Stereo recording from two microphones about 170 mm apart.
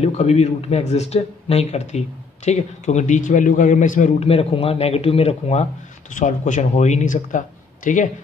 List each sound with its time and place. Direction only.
0.0 s speech: 40° left (ahead or behind)